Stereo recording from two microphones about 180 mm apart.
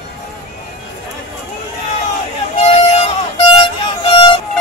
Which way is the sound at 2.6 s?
35° left (ahead or behind).